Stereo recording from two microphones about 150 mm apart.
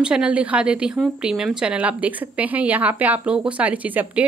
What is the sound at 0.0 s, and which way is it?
A woman's voice, 5° right (ahead or behind).